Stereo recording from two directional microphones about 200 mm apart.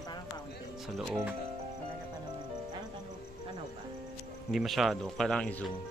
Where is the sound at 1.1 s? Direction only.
5° right (ahead or behind).